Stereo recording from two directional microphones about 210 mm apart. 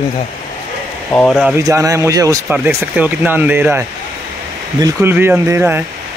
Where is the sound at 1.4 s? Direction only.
10° right (ahead or behind).